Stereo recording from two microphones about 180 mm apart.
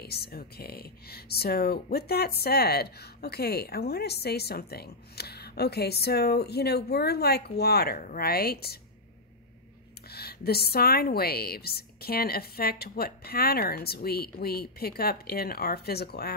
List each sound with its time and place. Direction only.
0.0 s speech: 60° left (ahead or behind)
10.0 s speech: 60° left (ahead or behind)